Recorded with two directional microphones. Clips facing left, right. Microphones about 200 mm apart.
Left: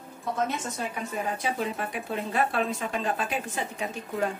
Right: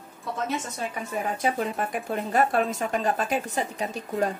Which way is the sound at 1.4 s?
50° right (ahead or behind).